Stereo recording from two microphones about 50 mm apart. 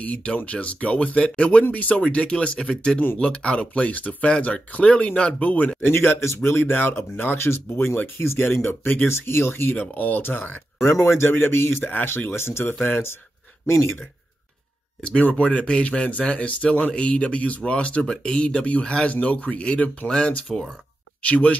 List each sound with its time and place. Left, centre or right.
0.0 s speech: left
1.6 s speech: left
5.8 s speech: left
8.8 s speech: left
9.1 s speech: left
9.8 s speech: left
10.9 s speech: left
15.0 s speech: left
20.1 s speech: centre